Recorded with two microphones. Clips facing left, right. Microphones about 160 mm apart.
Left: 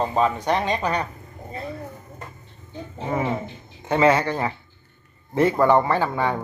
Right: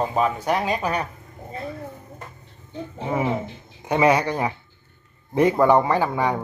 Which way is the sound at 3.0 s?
10° right (ahead or behind).